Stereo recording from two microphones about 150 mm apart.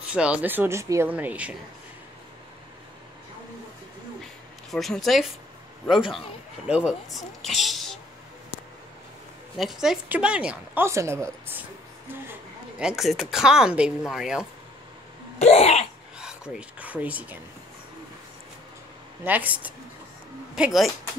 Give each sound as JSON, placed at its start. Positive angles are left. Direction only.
{"t": 0.1, "sound": "speech", "side_deg": -5}
{"t": 4.2, "sound": "a sound", "side_deg": 0}
{"t": 6.7, "sound": "speech", "side_deg": -5}
{"t": 9.6, "sound": "a woman's voice", "side_deg": 0}
{"t": 15.3, "sound": "cough", "side_deg": 45}
{"t": 16.2, "sound": "speech", "side_deg": -5}
{"t": 19.2, "sound": "speech", "side_deg": -10}